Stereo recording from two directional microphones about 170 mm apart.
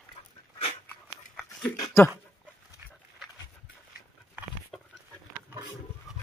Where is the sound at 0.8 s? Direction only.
10° left (ahead or behind).